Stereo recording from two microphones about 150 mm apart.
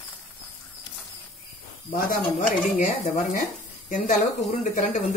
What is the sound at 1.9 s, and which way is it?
Speech, 60° left (ahead or behind).